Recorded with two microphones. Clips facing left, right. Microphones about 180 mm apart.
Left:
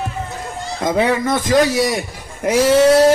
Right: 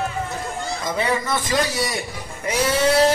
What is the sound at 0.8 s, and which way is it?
Speech, 60° left (ahead or behind).